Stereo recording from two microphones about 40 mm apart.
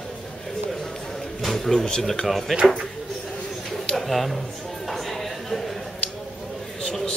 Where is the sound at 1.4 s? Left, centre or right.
Centre.